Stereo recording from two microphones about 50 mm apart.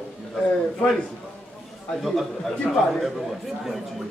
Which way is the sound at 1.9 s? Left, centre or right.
Centre.